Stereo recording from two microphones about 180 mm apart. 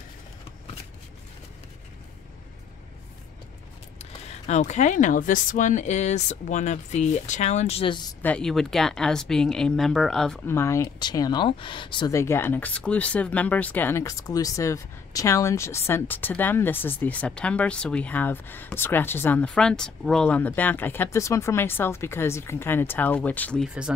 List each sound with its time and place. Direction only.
4.0 s speech: 35° left (ahead or behind)
8.2 s speech: 5° left (ahead or behind)